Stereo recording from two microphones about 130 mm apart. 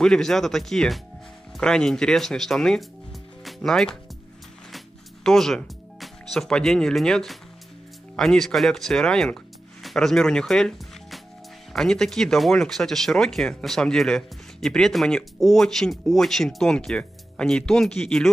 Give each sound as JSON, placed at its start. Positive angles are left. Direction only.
{"t": 0.0, "sound": "speech", "side_deg": 5}
{"t": 4.7, "sound": "music", "side_deg": 5}
{"t": 8.2, "sound": "speech", "side_deg": 5}